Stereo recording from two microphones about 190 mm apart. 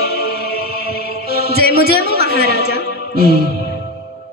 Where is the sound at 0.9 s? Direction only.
55° left (ahead or behind).